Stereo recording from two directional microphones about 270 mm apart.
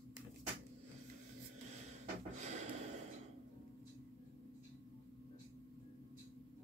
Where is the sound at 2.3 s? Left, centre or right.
Right.